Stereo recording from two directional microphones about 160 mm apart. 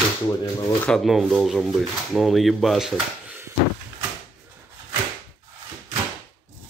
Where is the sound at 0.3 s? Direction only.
20° left (ahead or behind).